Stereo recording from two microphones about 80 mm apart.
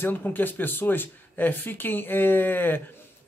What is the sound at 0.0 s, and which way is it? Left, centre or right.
Speech, left.